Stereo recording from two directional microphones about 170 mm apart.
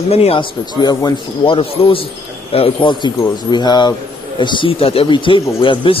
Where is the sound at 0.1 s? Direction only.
35° left (ahead or behind).